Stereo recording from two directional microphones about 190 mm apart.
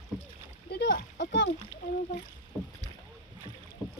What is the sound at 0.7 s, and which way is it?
Speech, 70° left (ahead or behind).